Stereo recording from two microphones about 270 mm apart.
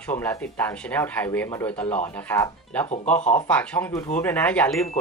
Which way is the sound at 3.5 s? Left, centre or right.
Centre.